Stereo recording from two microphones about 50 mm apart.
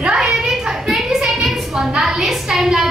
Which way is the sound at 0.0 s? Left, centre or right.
Centre.